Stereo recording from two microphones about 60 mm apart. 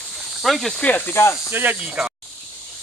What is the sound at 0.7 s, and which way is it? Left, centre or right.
Speech, left.